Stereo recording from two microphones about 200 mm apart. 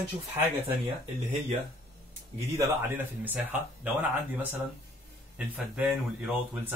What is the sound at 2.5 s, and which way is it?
Speech, 10° right (ahead or behind).